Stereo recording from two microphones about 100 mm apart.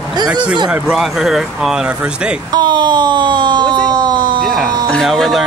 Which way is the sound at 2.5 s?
45° right (ahead or behind).